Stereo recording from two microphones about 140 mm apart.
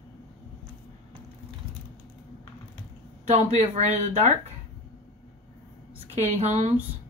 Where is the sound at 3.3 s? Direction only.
50° right (ahead or behind).